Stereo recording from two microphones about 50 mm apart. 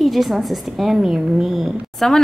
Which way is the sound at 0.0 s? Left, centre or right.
Centre.